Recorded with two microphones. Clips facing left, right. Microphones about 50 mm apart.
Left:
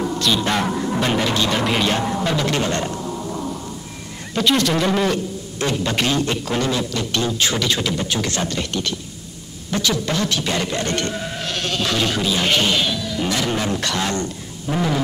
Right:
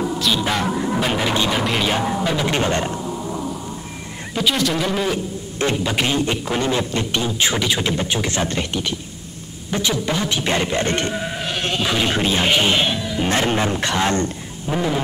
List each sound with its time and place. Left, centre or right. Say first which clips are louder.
0.0 s music: even; centre
2.4 s a man's voice: right 1 dB; right
3.0 s a sound: right 1 dB; centre
4.3 s speech: left 2 dB; centre
5.9 s a man's voice: even; centre
14.7 s speech: even; centre